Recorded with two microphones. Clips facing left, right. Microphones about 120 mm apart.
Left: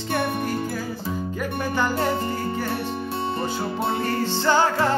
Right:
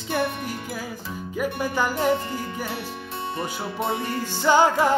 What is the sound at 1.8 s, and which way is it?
Music, 10° right (ahead or behind).